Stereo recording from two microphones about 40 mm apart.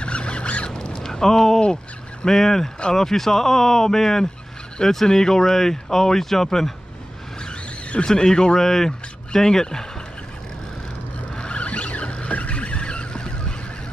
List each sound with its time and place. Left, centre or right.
0.0 s vehicle: left
0.7 s a sound: left
2.2 s speech: centre
7.3 s vehicle: left
8.6 s speech: centre
11.3 s vehicle: left